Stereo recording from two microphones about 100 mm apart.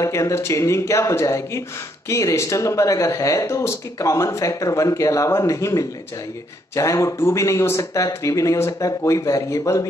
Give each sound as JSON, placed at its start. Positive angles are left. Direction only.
{"t": 0.0, "sound": "speech", "side_deg": 30}